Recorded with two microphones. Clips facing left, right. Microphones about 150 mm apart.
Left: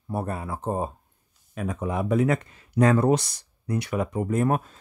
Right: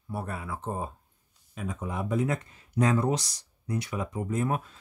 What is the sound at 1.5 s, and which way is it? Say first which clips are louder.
Speech: left 6 dB; 65° left (ahead or behind).